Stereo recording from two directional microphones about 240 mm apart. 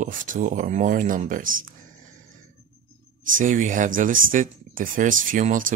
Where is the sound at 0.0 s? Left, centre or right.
Right.